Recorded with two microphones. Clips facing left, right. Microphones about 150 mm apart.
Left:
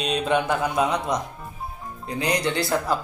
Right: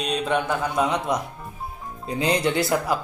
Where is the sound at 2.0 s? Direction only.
20° right (ahead or behind).